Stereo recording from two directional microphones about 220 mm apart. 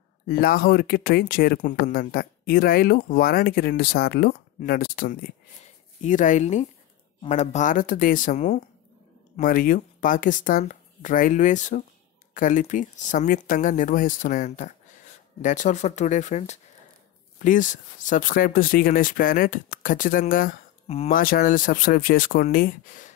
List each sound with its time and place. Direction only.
0.3 s speech: 40° left (ahead or behind)
20.8 s speech: 25° left (ahead or behind)
21.1 s speech: 40° left (ahead or behind)